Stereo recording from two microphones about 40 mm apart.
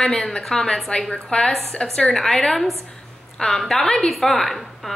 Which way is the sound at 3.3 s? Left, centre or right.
Centre.